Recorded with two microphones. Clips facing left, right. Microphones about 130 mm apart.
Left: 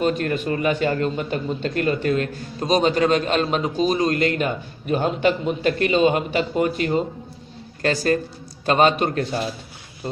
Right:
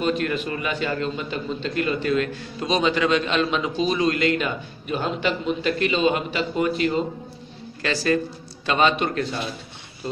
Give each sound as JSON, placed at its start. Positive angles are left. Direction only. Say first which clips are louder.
{"t": 0.0, "sound": "a man's voice", "louder": "left 2 dB", "side_deg": 45}